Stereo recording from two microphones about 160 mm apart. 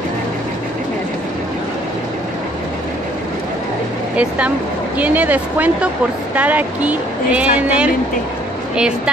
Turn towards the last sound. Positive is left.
turn(degrees=-5)  # may be behind; listen again after turning